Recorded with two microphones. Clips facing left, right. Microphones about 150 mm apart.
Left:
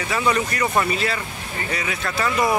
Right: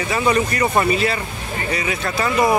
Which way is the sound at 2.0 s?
15° right (ahead or behind).